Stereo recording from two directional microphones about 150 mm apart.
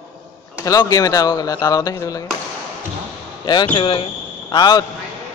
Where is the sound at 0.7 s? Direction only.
25° left (ahead or behind).